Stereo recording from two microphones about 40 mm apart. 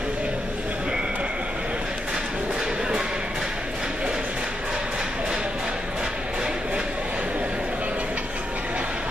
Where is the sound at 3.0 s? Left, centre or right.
Centre.